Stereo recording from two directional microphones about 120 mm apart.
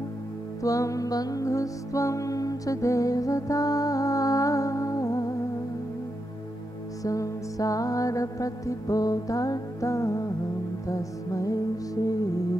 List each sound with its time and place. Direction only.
0.6 s music: 25° left (ahead or behind)
7.0 s music: 30° left (ahead or behind)